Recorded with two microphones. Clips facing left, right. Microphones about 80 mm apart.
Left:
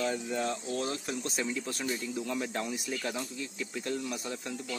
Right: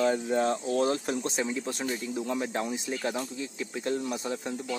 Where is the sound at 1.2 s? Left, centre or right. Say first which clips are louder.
Right 4 dB; right.